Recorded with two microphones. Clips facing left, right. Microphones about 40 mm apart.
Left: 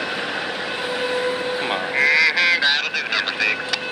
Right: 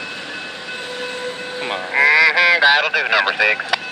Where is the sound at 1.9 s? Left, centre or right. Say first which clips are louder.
Right 5 dB; centre.